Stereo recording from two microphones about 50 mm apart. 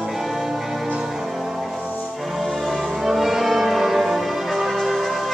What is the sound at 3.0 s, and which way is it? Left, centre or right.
Music, centre.